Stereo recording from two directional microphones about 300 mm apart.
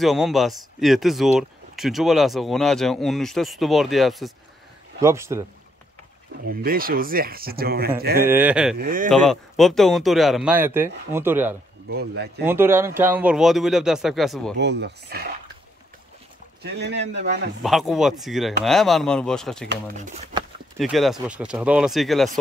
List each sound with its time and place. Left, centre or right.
0.0 s speech: centre
6.4 s speech: right
8.2 s speech: centre
8.7 s speech: right
9.1 s speech: centre
11.9 s speech: right
12.4 s speech: centre
14.6 s speech: right
16.6 s speech: right
17.6 s speech: centre
20.0 s speech: right
20.8 s speech: centre